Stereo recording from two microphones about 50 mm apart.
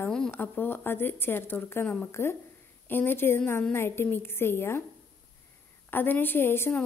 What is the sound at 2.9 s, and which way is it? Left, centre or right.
A woman's voice, left.